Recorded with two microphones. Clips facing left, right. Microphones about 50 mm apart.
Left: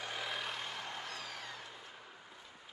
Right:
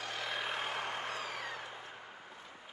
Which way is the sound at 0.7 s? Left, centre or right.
Right.